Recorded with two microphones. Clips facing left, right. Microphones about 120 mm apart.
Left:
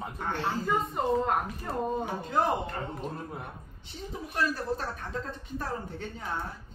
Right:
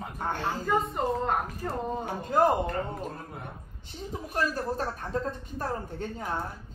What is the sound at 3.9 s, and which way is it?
A woman's voice, 45° right (ahead or behind).